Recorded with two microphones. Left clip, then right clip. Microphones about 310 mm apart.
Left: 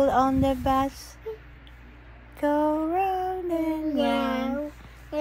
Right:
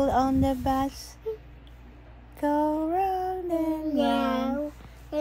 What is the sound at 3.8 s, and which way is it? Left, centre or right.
Child singing, centre.